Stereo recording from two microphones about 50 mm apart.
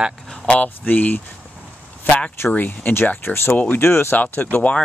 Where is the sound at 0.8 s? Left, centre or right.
Left.